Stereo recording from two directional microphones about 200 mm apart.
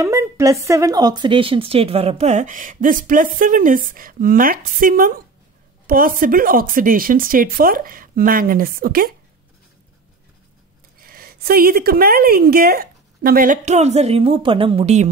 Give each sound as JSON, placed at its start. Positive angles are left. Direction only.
{"t": 0.0, "sound": "a woman's voice", "side_deg": -15}
{"t": 11.0, "sound": "a woman's voice", "side_deg": -45}